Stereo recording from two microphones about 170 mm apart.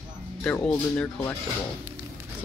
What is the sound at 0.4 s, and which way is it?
Speech, 5° left (ahead or behind).